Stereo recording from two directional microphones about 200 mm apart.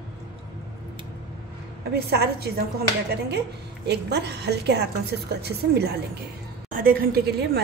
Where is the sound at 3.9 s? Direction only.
60° right (ahead or behind).